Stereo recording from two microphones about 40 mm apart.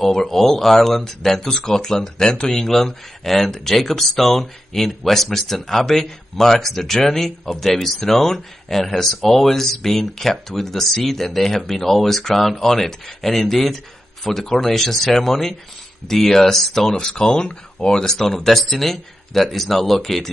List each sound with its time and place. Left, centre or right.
0.0 s speech: centre
2.6 s speech: centre